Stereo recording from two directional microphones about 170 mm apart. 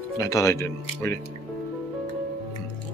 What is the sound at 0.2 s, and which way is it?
Speech, 20° left (ahead or behind).